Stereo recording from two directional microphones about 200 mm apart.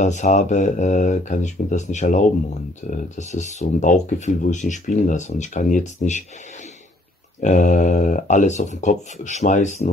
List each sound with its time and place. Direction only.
0.0 s speech: 35° left (ahead or behind)
7.3 s speech: 40° left (ahead or behind)